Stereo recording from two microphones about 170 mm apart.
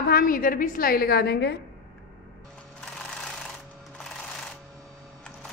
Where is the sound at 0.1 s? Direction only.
55° left (ahead or behind); by 1.6 s 75° left (ahead or behind).